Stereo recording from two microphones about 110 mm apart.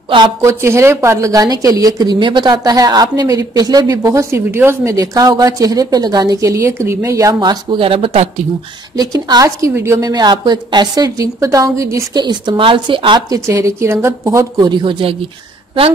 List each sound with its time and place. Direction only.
0.4 s a woman's voice: 25° right (ahead or behind)
7.8 s speech: 55° right (ahead or behind)
8.9 s a woman's voice: 35° right (ahead or behind)
10.0 s a woman's voice: 40° right (ahead or behind)
12.2 s speech: 40° right (ahead or behind)
13.3 s speech: 30° right (ahead or behind)
14.6 s speech: 45° right (ahead or behind)